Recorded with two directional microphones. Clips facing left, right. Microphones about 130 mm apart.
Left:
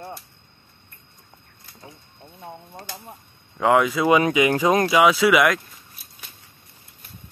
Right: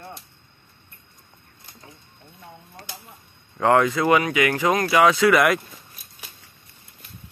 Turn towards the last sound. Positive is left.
turn(degrees=0)  # may be behind; listen again after turning